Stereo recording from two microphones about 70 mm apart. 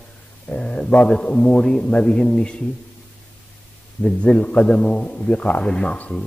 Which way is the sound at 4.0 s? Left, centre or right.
Centre.